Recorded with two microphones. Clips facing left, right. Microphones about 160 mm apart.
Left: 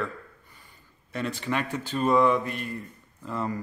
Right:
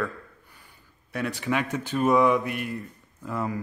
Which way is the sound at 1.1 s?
10° right (ahead or behind).